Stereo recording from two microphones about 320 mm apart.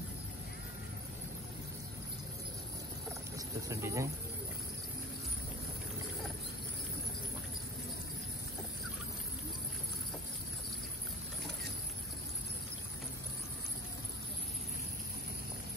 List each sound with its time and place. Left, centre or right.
3.3 s speech: centre